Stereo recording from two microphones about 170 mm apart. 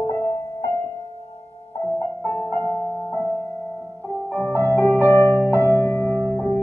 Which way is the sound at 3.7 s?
15° right (ahead or behind).